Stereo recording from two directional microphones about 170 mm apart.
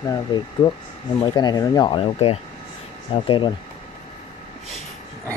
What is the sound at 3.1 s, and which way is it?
Rub, 30° left (ahead or behind).